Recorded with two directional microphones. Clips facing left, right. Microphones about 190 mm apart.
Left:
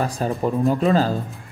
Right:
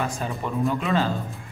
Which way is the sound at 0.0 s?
35° left (ahead or behind).